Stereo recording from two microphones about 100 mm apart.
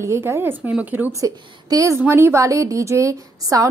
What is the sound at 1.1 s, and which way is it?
A woman's voice, 35° right (ahead or behind).